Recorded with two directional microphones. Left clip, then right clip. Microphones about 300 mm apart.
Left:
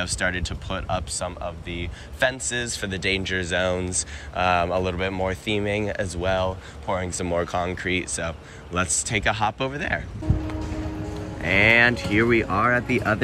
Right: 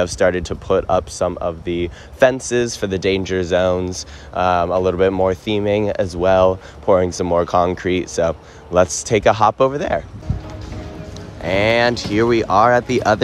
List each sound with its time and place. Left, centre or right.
0.0 s speech: right
11.4 s speech: centre